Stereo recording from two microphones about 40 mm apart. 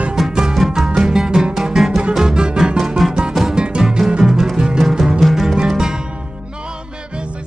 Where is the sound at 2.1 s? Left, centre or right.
Centre.